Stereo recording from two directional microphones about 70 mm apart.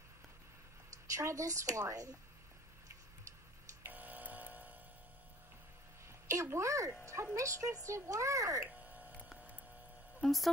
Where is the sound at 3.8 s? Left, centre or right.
Right.